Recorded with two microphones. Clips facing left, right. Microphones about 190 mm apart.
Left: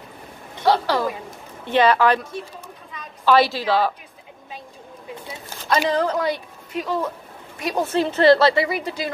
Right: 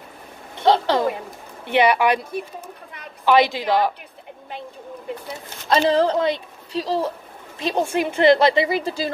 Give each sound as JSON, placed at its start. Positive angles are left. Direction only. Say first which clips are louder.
{"t": 0.7, "sound": "a sound", "louder": "right 2 dB", "side_deg": -20}
{"t": 1.7, "sound": "a woman's voice", "louder": "even", "side_deg": -15}
{"t": 3.3, "sound": "a woman's voice", "louder": "even", "side_deg": -15}
{"t": 5.7, "sound": "a woman's voice", "louder": "right 3 dB", "side_deg": -30}
{"t": 7.8, "sound": "a woman's voice", "louder": "left 1 dB", "side_deg": -10}